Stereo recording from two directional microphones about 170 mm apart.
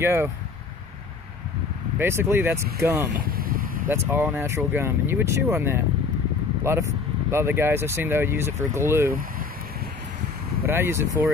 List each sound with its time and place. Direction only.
0.0 s speech: 15° right (ahead or behind)
2.0 s speech: 15° right (ahead or behind)
3.2 s a sound: 60° right (ahead or behind)
3.9 s speech: 15° right (ahead or behind)
10.7 s speech: 15° right (ahead or behind)